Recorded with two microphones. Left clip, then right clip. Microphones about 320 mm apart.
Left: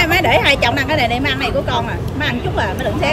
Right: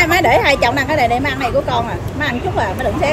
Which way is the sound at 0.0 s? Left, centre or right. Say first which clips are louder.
Right 1 dB; centre.